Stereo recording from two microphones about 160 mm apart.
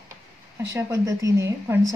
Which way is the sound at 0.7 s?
20° right (ahead or behind).